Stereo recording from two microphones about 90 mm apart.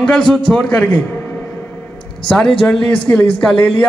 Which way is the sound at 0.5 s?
10° left (ahead or behind).